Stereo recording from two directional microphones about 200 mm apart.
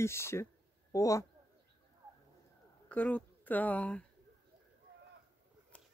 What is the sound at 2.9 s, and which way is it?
Speech, 5° left (ahead or behind).